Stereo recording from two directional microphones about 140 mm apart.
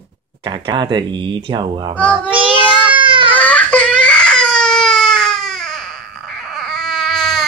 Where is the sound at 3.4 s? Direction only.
10° left (ahead or behind).